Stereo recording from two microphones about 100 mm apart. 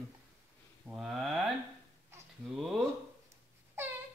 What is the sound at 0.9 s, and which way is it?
Mantra, 5° right (ahead or behind).